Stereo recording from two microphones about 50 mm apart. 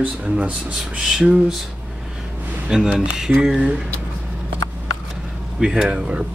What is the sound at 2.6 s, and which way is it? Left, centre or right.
Speech, centre.